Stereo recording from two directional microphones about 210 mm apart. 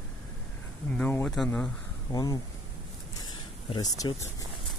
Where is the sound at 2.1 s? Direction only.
15° left (ahead or behind).